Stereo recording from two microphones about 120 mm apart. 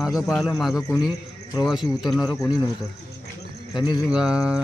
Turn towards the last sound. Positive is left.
turn(degrees=-5)  # may be behind; listen again after turning